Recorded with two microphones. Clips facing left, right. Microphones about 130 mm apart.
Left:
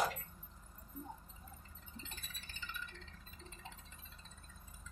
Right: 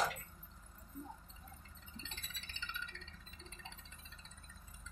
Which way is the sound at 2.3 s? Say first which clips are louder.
Right 1 dB; 45° left (ahead or behind).